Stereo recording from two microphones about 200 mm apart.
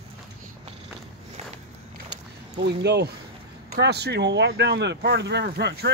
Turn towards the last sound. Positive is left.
turn(degrees=-55)  # may be behind; listen again after turning